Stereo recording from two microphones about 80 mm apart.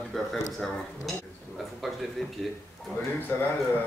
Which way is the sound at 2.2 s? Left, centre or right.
Centre.